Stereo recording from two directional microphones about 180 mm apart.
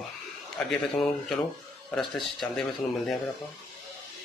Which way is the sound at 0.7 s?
Centre (ahead or behind).